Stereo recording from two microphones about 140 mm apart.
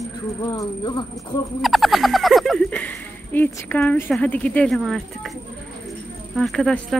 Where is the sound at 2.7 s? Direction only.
10° left (ahead or behind).